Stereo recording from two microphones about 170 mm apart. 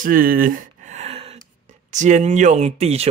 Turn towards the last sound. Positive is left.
turn(degrees=-40)  # may be behind; listen again after turning